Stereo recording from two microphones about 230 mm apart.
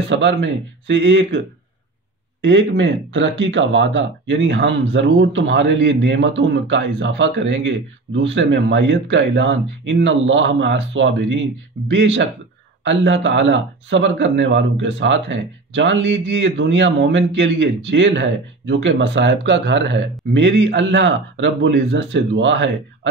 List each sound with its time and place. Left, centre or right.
0.1 s speech: right
2.4 s speech: right